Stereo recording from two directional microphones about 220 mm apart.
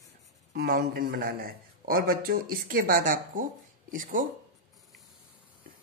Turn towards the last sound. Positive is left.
turn(degrees=-35)  # may be behind; listen again after turning